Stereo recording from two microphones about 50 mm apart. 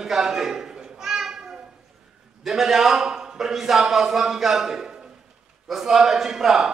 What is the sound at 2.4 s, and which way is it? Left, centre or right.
A man's voice, centre.